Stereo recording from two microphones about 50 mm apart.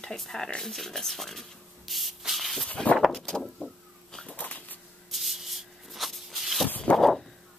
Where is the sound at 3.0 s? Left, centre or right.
Centre.